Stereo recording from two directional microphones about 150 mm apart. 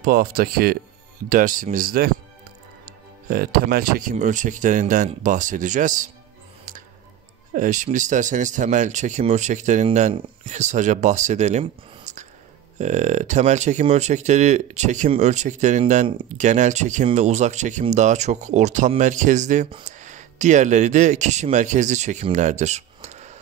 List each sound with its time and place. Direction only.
0.0 s speech: 75° right (ahead or behind)
1.3 s speech: 65° right (ahead or behind); by 2.1 s 80° right
3.3 s speech: 85° right
4.1 s speech: 55° right (ahead or behind)
7.5 s speech: 60° right (ahead or behind)